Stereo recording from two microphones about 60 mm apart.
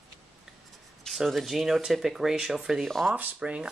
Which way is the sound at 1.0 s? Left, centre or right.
Centre.